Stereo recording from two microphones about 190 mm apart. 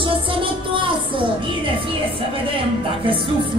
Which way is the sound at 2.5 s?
25° right (ahead or behind).